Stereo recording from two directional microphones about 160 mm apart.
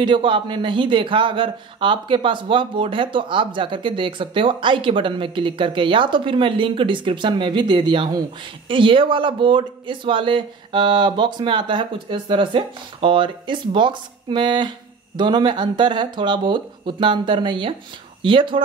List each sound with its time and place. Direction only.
0.0 s a man's voice: 30° right (ahead or behind)